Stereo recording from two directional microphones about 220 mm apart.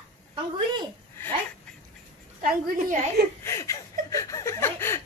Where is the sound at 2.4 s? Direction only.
40° right (ahead or behind).